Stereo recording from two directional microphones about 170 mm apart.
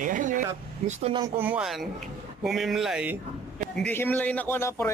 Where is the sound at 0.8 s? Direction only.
35° right (ahead or behind).